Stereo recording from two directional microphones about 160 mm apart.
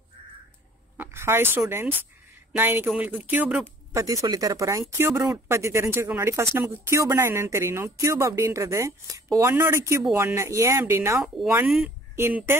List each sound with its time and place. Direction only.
0.9 s a woman's voice: 15° right (ahead or behind)
11.5 s speech: 5° right (ahead or behind)